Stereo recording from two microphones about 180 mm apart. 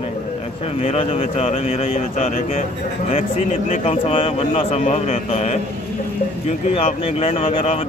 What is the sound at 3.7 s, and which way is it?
Speech, 35° left (ahead or behind).